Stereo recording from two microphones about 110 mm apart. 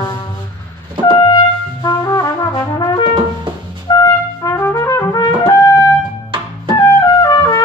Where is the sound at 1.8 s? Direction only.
35° left (ahead or behind).